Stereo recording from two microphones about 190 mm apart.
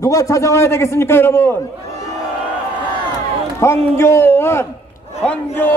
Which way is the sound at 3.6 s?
15° left (ahead or behind).